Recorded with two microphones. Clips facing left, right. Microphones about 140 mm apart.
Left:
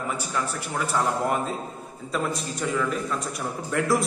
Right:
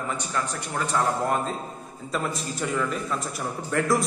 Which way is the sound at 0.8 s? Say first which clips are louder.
Even; 10° left (ahead or behind).